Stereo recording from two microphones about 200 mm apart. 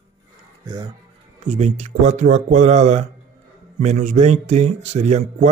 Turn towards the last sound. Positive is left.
turn(degrees=-35)  # may be behind; listen again after turning